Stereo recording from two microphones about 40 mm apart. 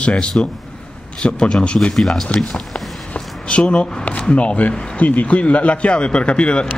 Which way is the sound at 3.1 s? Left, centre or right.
Left.